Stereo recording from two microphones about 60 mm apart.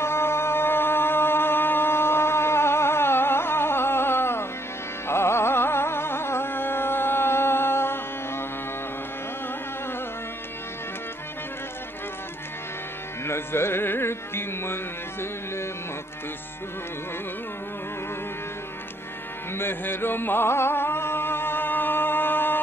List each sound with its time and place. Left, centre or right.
0.0 s music: left
13.2 s music: left
19.5 s music: left